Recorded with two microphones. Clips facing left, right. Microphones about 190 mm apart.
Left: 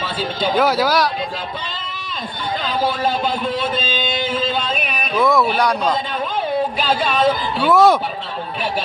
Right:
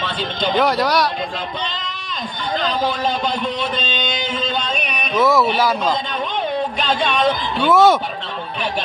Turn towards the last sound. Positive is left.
turn(degrees=0)  # may be behind; listen again after turning